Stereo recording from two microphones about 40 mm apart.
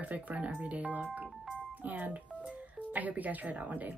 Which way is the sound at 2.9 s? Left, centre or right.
Right.